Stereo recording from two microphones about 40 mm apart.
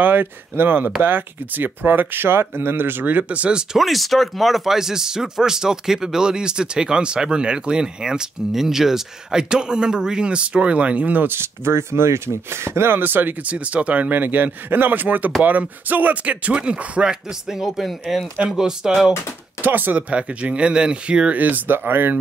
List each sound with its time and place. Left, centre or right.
0.0 s speech: right
3.3 s speech: right
3.7 s speech: centre; by 11.2 s right
11.2 s speech: right
13.0 s speech: right
13.4 s speech: right
14.1 s speech: right
16.5 s speech: right
17.1 s speech: centre
19.6 s speech: right
20.1 s speech: right
21.4 s speech: right
21.6 s speech: right